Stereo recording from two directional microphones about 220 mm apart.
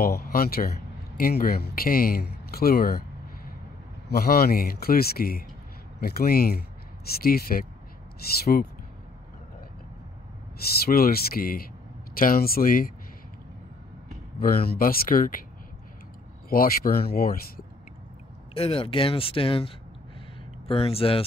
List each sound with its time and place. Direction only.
0.0 s speech: 40° left (ahead or behind)
4.1 s speech: 45° left (ahead or behind)
10.9 s speech: 45° left (ahead or behind)
14.4 s speech: 40° left (ahead or behind)
16.4 s speech: 40° left (ahead or behind)
18.5 s speech: 25° left (ahead or behind)